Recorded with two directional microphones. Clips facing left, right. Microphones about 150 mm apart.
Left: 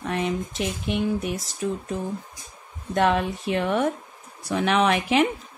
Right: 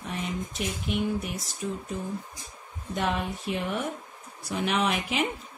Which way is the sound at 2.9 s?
90° left.